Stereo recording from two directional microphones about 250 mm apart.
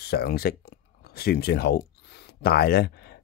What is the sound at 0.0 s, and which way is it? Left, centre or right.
Speech, left.